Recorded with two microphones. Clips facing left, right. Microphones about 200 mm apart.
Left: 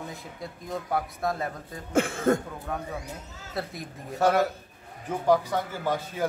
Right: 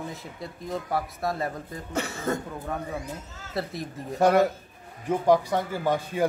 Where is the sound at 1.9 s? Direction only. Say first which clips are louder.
Left 6 dB; 50° left (ahead or behind).